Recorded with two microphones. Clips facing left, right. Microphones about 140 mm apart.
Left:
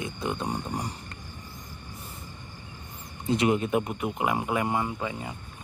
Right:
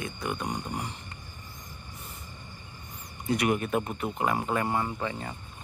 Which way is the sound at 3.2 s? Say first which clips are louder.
Left 2 dB; 25° left (ahead or behind).